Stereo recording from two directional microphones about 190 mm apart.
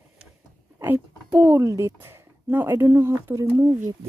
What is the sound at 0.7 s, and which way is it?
Speech, 10° right (ahead or behind).